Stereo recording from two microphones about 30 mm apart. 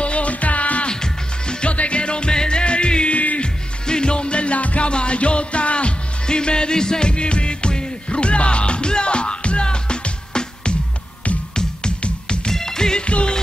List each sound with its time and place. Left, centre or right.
0.0 s music: left
0.8 s music: left
1.6 s music: left
3.1 s music: left
3.8 s music: left
6.2 s music: left
12.5 s music: centre
13.0 s music: left